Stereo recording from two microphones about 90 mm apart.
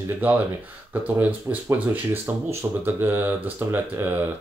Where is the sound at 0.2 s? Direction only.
20° right (ahead or behind).